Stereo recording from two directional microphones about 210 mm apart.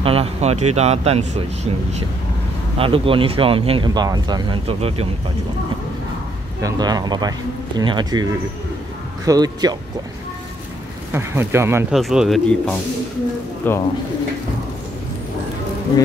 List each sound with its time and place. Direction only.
0.0 s speech: 30° right (ahead or behind)
6.6 s speech: 20° right (ahead or behind)
11.1 s speech: 10° right (ahead or behind); by 13.8 s 10° left (ahead or behind)